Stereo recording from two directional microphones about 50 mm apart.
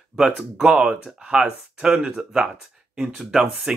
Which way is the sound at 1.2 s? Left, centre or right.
Centre.